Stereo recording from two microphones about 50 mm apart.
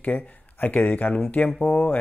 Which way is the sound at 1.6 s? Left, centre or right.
Centre.